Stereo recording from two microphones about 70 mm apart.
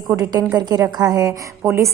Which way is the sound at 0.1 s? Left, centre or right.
Right.